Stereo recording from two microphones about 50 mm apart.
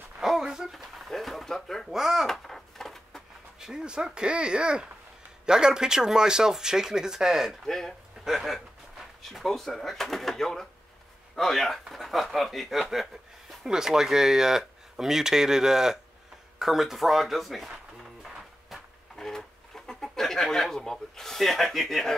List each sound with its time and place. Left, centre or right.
0.2 s a sound: centre
1.9 s speech: centre
2.2 s a sound: centre
3.5 s speech: centre
7.6 s speech: centre
8.2 s speech: centre
12.9 s chuckle: centre
13.7 s speech: centre
18.7 s a sound: centre
19.1 s chicken: centre